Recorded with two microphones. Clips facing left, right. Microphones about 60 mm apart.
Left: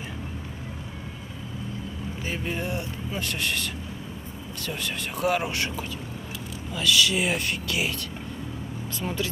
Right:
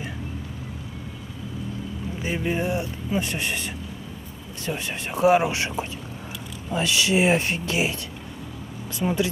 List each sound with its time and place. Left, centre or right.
2.2 s speech: centre
9.0 s speech: right